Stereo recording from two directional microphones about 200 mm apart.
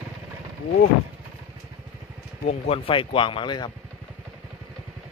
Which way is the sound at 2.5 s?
30° left (ahead or behind).